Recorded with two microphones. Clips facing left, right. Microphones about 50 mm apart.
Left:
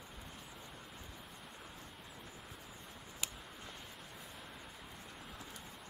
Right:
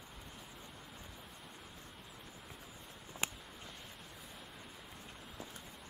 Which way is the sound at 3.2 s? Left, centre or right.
Right.